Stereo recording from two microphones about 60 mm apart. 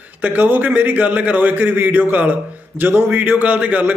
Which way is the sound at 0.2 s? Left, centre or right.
Right.